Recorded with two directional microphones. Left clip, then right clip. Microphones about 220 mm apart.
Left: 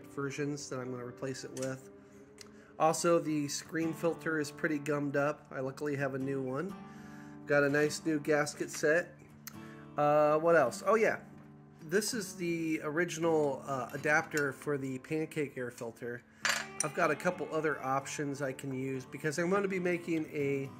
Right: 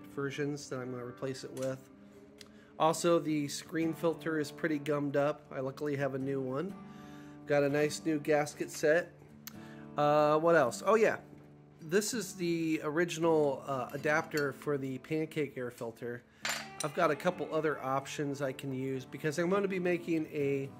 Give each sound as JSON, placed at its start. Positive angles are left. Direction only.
{"t": 0.1, "sound": "speech", "side_deg": 0}
{"t": 2.8, "sound": "speech", "side_deg": -10}
{"t": 9.9, "sound": "speech", "side_deg": -20}